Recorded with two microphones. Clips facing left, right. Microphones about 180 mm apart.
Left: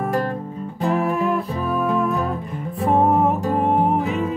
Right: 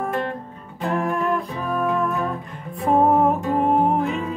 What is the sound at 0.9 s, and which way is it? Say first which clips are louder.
Music: left 1 dB; 5° left (ahead or behind).